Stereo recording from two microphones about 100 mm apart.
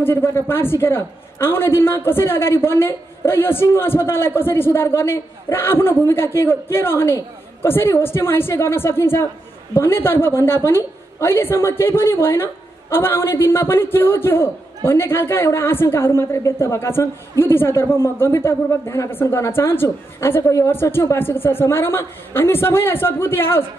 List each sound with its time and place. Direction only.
0.0 s a woman's voice: 25° left (ahead or behind)